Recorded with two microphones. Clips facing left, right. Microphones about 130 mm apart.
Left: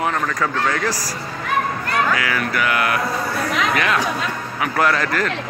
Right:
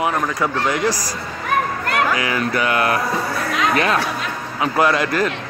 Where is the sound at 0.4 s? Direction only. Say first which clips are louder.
Right 1 dB; 15° right (ahead or behind).